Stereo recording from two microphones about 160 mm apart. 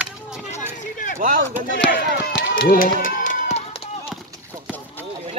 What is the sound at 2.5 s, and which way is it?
Run, 60° left (ahead or behind).